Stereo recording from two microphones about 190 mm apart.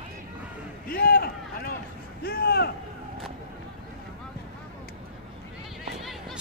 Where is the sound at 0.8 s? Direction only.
50° left (ahead or behind).